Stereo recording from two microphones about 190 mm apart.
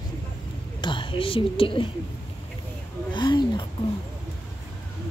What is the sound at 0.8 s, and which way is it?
Speech, 25° left (ahead or behind).